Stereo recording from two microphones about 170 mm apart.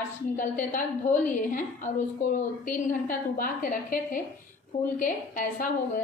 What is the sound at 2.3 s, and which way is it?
A woman's voice, 50° left (ahead or behind).